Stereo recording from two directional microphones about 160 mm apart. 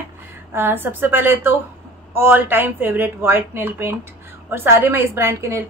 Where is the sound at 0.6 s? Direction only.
15° right (ahead or behind).